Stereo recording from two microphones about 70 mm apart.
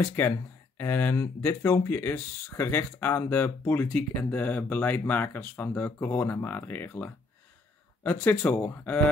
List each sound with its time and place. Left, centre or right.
0.2 s speech: left
8.5 s speech: left